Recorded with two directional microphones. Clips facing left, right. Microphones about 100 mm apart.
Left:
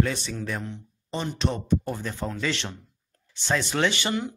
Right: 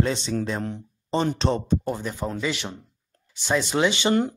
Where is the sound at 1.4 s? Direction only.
30° right (ahead or behind).